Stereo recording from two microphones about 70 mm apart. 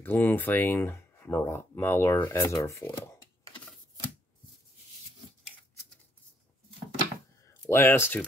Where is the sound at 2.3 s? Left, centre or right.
Left.